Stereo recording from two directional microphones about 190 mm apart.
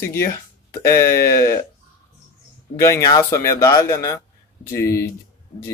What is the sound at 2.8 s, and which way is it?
Speech, 15° left (ahead or behind).